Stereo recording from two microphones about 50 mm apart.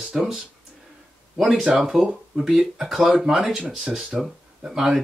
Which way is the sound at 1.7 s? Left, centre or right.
Centre.